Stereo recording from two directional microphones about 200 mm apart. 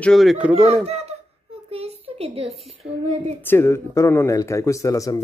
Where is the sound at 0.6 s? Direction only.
30° right (ahead or behind).